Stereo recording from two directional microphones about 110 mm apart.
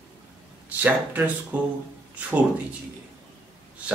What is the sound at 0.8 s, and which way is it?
Speech, 15° right (ahead or behind).